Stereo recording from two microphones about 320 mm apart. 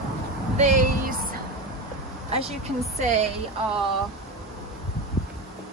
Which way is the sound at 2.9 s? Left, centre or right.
Right.